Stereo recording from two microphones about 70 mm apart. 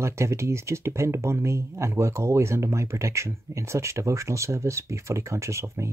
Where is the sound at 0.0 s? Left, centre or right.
Right.